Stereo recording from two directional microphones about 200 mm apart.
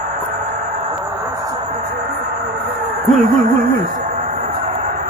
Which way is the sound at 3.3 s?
45° right (ahead or behind).